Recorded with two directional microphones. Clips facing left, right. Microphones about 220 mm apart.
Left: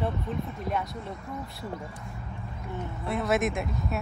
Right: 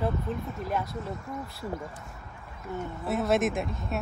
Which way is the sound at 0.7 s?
25° left (ahead or behind).